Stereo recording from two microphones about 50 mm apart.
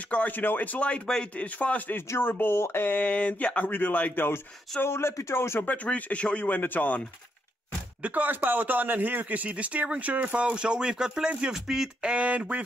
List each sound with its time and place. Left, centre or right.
0.1 s a man's voice: left
2.2 s a man's voice: left
3.1 s speech: left
3.6 s a man's voice: left
5.9 s a man's voice: left
8.0 s speech: right